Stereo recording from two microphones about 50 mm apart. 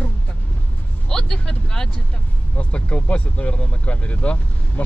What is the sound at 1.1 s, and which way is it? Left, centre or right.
Vehicle, centre.